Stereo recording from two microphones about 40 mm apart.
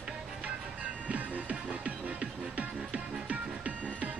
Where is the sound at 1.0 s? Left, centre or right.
Right.